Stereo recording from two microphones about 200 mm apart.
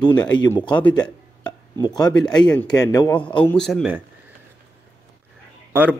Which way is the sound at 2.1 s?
5° left (ahead or behind).